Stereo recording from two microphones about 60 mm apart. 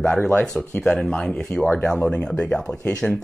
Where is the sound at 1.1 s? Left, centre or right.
Centre.